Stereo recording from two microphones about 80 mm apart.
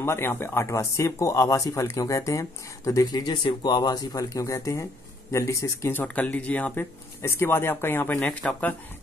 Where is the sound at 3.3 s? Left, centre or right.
Left.